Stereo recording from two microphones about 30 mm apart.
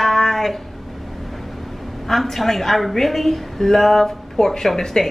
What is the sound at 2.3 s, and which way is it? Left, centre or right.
A woman's voice, centre.